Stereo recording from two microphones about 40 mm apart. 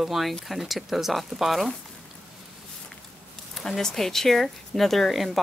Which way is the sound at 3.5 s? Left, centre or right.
Centre.